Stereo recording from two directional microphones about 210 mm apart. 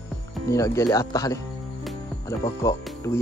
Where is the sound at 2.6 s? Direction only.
15° left (ahead or behind).